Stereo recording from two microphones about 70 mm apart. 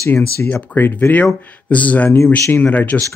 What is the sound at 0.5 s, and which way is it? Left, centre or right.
Speech, left.